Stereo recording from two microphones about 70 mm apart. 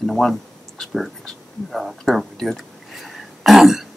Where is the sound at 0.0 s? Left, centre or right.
Centre.